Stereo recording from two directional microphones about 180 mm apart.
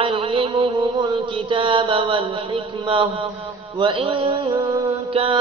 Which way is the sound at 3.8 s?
25° right (ahead or behind).